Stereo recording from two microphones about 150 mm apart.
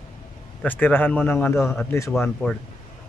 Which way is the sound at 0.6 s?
10° left (ahead or behind).